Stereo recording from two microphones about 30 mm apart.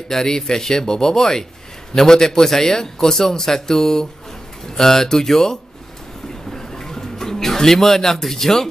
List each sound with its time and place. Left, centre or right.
0.1 s speech: centre
6.5 s bird: centre